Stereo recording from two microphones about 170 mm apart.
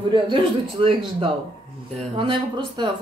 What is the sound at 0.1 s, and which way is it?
A man's voice, 30° right (ahead or behind).